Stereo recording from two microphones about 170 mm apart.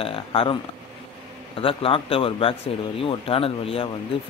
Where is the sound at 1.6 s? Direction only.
30° left (ahead or behind).